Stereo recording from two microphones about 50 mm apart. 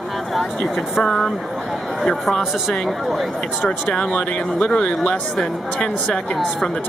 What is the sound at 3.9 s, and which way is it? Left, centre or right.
Speech, centre.